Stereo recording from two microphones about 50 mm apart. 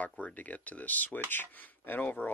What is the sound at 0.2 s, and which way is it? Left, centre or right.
Speech, left.